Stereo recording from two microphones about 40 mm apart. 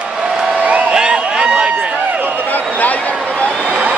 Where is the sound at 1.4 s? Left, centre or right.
Right.